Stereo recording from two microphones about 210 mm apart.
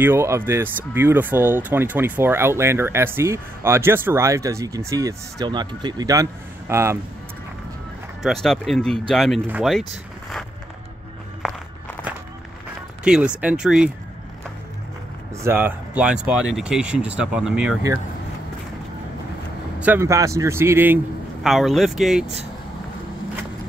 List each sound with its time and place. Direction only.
0.0 s speech: 10° right (ahead or behind)
8.2 s speech: centre (ahead or behind)
13.0 s speech: 5° right (ahead or behind)
15.4 s speech: 10° right (ahead or behind)
19.8 s speech: 10° right (ahead or behind)